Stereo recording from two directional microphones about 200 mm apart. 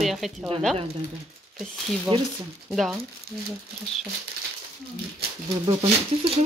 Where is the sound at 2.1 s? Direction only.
25° right (ahead or behind).